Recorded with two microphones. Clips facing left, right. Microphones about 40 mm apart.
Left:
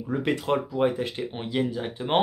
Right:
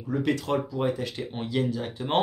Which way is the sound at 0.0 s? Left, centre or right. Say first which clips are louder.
Even; left.